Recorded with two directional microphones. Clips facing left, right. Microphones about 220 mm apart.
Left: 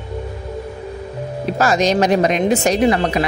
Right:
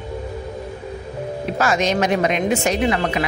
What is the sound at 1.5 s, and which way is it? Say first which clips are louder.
Speech: left 4 dB; 40° left (ahead or behind).